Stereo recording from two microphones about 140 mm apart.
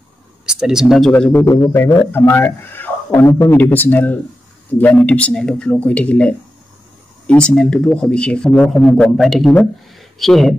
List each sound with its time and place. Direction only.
0.5 s speech: 5° right (ahead or behind)
1.1 s a man's voice: 15° left (ahead or behind)